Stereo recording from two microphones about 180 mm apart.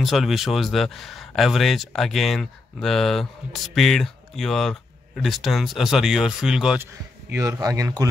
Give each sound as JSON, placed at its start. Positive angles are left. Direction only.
{"t": 0.0, "sound": "speech", "side_deg": 0}
{"t": 7.3, "sound": "speech", "side_deg": -15}